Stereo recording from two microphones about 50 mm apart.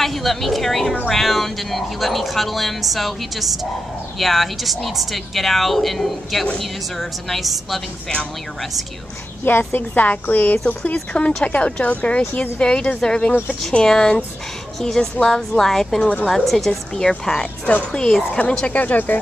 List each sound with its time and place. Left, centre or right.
0.0 s speech: centre
9.4 s a woman's voice: left
10.9 s a woman's voice: left
15.6 s a woman's voice: centre
18.7 s a woman's voice: left